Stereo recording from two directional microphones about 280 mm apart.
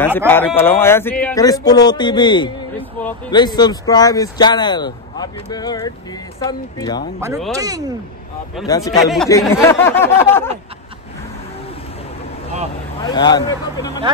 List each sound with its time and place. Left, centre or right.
0.3 s speech: centre
7.2 s speech: centre
8.6 s speech: centre
9.0 s speech: centre
13.0 s speech: centre